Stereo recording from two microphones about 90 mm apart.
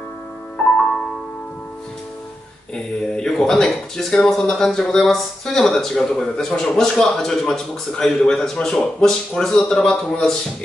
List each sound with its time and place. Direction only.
0.6 s music: 15° left (ahead or behind)
2.7 s speech: 5° left (ahead or behind)